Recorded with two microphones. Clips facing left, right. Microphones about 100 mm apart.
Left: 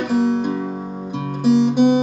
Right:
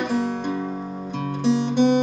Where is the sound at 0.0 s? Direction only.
10° left (ahead or behind).